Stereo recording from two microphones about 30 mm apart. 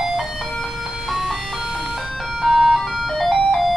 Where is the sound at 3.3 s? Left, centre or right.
Centre.